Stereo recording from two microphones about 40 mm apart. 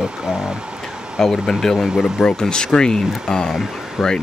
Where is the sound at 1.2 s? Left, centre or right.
Centre.